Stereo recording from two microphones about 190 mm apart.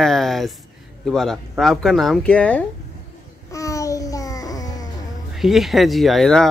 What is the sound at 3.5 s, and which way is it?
Babbling, 15° left (ahead or behind).